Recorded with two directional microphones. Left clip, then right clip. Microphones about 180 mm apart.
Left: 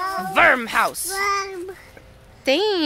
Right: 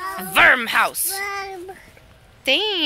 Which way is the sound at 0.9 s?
30° left (ahead or behind).